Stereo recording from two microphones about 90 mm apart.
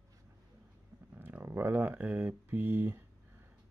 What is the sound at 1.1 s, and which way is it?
Speech, 20° right (ahead or behind).